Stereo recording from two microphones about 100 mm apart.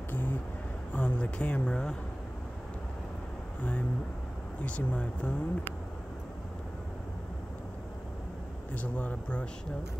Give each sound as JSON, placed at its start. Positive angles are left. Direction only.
{"t": 0.1, "sound": "vehicle", "side_deg": 20}
{"t": 0.9, "sound": "speech", "side_deg": 15}
{"t": 4.6, "sound": "speech", "side_deg": 15}
{"t": 8.7, "sound": "speech", "side_deg": 15}